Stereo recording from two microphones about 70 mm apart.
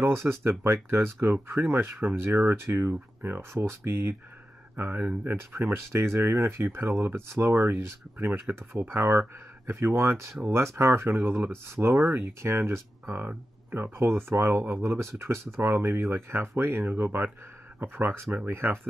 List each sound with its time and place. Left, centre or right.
0.0 s speech: right
13.9 s speech: right